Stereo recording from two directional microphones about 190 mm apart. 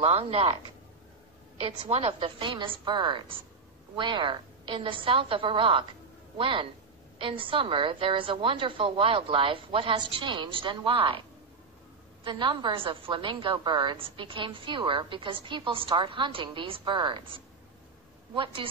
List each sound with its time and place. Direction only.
0.0 s speech: 30° right (ahead or behind)
1.6 s a woman's voice: 30° right (ahead or behind)
12.3 s a woman's voice: 25° right (ahead or behind)